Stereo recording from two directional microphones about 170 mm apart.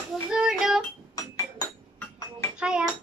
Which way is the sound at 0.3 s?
5° right (ahead or behind).